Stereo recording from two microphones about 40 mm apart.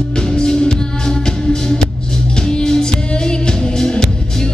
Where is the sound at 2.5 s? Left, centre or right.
Centre.